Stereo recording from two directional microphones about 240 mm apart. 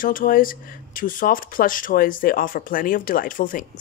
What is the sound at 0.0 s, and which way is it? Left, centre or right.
Speech, left.